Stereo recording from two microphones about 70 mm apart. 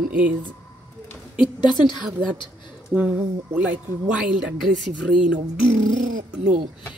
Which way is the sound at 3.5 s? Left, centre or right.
Right.